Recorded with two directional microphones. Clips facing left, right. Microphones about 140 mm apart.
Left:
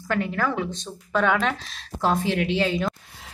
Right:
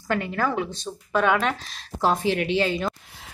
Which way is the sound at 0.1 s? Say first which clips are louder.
Even; 10° right (ahead or behind).